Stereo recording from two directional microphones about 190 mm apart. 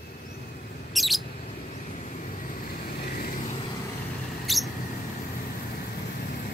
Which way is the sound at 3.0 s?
50° left (ahead or behind).